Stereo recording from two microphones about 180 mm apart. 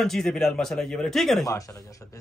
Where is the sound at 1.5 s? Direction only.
20° left (ahead or behind).